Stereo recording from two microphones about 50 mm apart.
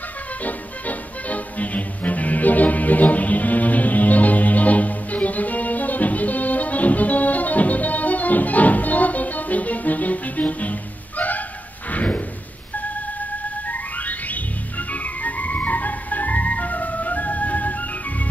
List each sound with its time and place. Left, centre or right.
0.4 s music: left
11.9 s a sound: left
13.7 s music: left